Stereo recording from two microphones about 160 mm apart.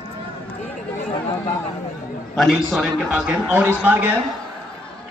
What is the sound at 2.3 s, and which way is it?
A man's voice, centre (ahead or behind).